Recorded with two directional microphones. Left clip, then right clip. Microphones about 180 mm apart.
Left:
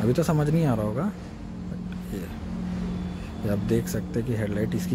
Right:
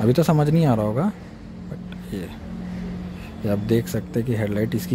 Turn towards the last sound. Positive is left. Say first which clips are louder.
# right 4 dB
turn(degrees=-25)  # may be behind; listen again after turning